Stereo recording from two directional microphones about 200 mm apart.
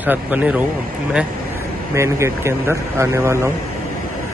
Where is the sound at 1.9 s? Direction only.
15° right (ahead or behind).